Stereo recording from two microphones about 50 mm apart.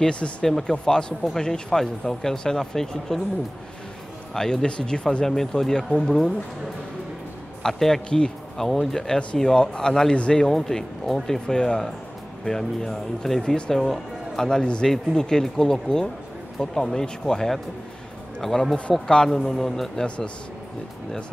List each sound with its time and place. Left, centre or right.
0.0 s speech: centre
4.3 s speech: centre
5.2 s speech: centre
7.6 s speech: centre